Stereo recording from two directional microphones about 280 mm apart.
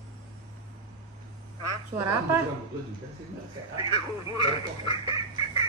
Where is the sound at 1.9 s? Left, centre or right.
Centre.